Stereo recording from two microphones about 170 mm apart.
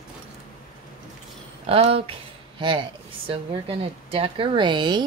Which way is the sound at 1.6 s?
35° right (ahead or behind).